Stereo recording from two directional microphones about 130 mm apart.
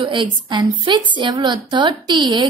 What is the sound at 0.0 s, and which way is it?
A woman's voice, 40° right (ahead or behind).